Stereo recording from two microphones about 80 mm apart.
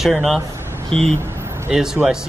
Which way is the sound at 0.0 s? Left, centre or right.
Centre.